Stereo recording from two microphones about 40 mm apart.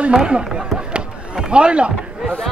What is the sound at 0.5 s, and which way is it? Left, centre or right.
Chop, centre.